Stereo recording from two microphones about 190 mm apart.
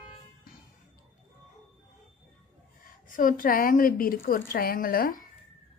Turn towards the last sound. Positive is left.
turn(degrees=50)  # may be behind; listen again after turning